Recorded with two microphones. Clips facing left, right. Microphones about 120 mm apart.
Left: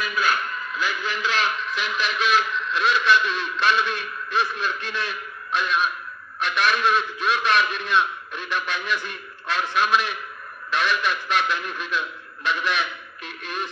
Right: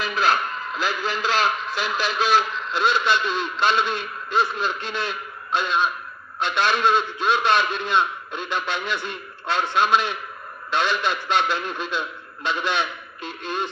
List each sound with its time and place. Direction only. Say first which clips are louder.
0.1 s a man's voice: right 4 dB; 35° right (ahead or behind)